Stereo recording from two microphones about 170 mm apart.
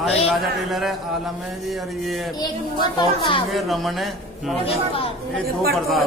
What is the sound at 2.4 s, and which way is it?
A child's voice, 25° left (ahead or behind).